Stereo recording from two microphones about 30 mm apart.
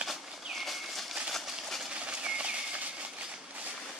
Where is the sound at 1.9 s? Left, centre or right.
Right.